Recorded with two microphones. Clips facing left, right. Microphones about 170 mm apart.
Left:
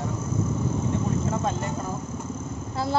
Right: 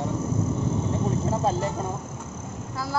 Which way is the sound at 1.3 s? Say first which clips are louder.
Right 3 dB; 30° right (ahead or behind).